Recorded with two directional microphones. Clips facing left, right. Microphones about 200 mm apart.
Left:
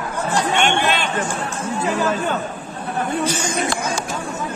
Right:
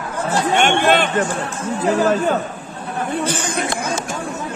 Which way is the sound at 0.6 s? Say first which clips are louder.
Right 4 dB; 50° right (ahead or behind).